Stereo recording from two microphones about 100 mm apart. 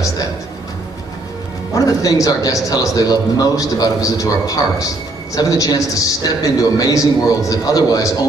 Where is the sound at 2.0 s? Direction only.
35° left (ahead or behind).